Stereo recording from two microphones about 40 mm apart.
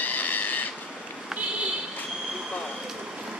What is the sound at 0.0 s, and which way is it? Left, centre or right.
Train, left.